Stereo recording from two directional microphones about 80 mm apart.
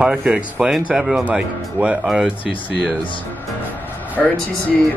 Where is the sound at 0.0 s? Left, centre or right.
Centre.